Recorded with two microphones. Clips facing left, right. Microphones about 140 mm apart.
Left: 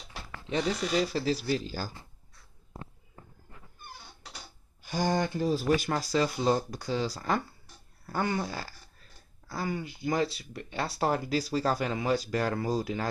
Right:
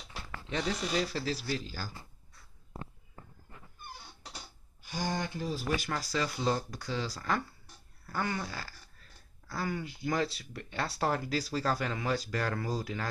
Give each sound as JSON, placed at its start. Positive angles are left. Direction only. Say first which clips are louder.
{"t": 0.5, "sound": "speech", "louder": "left 4 dB", "side_deg": 20}
{"t": 4.9, "sound": "speech", "louder": "left 6 dB", "side_deg": 45}
{"t": 5.8, "sound": "speech", "louder": "left 6 dB", "side_deg": 25}
{"t": 9.5, "sound": "speech", "louder": "left 2 dB", "side_deg": 10}